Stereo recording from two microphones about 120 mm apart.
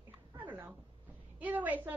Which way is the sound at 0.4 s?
15° right (ahead or behind).